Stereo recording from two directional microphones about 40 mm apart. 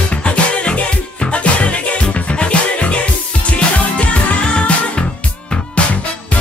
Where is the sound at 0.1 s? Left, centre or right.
Left.